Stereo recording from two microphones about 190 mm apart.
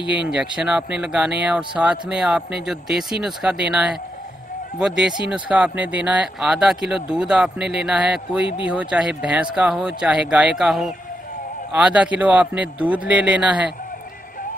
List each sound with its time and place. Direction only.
0.3 s a man's voice: 5° right (ahead or behind)